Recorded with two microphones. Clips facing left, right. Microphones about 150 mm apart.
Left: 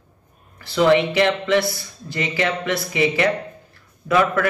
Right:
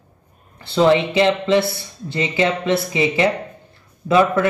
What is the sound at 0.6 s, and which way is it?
A man's voice, 25° right (ahead or behind).